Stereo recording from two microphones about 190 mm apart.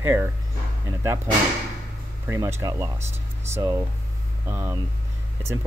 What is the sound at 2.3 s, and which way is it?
Speech, 15° right (ahead or behind).